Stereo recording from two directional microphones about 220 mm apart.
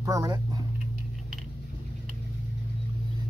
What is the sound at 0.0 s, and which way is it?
Speech, 15° right (ahead or behind).